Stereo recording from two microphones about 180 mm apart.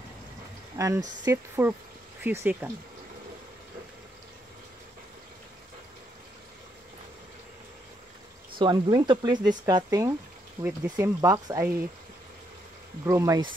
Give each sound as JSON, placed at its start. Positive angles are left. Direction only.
{"t": 0.7, "sound": "speech", "side_deg": -15}
{"t": 8.5, "sound": "speech", "side_deg": -25}
{"t": 13.0, "sound": "speech", "side_deg": -15}